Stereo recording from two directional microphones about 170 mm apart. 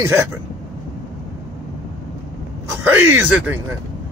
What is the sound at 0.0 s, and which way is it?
Speech, 15° right (ahead or behind).